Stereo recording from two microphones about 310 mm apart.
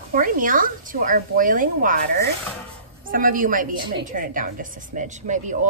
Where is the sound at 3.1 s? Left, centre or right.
Right.